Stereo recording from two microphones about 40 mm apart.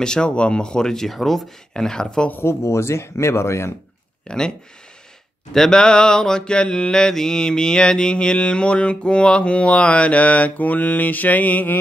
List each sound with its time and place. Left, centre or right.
0.0 s mantra: left
1.1 s speech: centre
1.7 s mantra: centre
2.3 s speech: left
4.3 s mantra: left
5.5 s mantra: centre; by 11.7 s left